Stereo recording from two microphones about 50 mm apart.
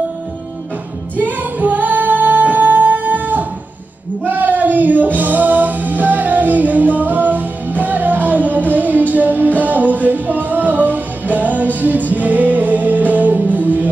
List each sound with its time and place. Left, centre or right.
1.2 s music: right